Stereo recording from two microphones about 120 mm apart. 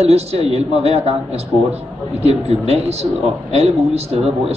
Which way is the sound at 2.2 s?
60° right (ahead or behind).